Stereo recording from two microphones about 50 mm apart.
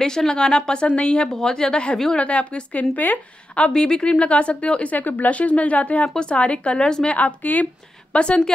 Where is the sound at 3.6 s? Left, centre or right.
Centre.